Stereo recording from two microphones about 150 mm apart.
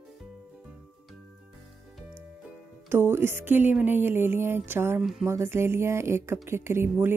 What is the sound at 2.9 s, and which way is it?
Speech, 15° right (ahead or behind).